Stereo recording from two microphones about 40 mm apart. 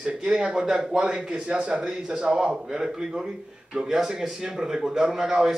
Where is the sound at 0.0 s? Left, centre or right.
Centre.